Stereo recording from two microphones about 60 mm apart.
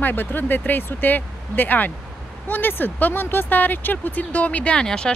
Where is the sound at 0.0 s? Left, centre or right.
Left.